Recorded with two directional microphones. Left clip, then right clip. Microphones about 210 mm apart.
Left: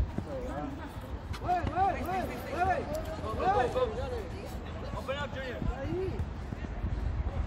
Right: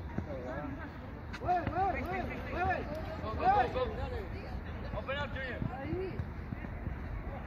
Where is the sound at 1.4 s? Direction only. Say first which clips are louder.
Left 2 dB; 35° right (ahead or behind).